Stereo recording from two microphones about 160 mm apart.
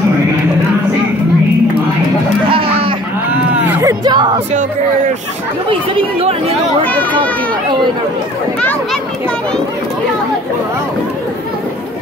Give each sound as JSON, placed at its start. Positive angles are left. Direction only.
{"t": 2.5, "sound": "a sound", "side_deg": -35}
{"t": 3.6, "sound": "music", "side_deg": -10}
{"t": 4.0, "sound": "music", "side_deg": -25}
{"t": 5.7, "sound": "speech", "side_deg": -35}
{"t": 6.8, "sound": "a child's voice", "side_deg": 10}